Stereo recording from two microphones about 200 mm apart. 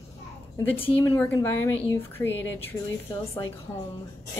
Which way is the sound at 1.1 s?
10° left (ahead or behind).